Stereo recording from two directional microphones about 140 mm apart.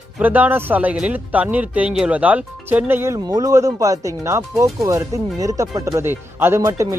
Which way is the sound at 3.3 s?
25° right (ahead or behind).